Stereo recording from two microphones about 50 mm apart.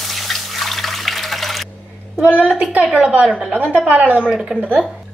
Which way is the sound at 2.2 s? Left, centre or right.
Right.